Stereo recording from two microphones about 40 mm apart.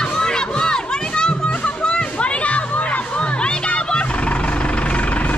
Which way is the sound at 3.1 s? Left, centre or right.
Left.